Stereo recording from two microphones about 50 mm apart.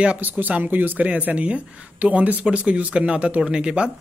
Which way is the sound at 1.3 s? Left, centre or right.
Right.